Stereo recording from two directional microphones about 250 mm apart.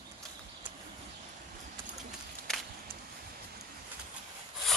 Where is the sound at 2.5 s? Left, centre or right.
Centre.